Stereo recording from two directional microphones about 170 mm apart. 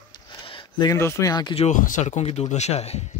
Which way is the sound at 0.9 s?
15° left (ahead or behind).